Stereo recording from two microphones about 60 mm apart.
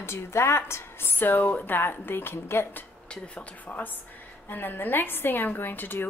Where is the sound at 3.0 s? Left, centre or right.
Centre.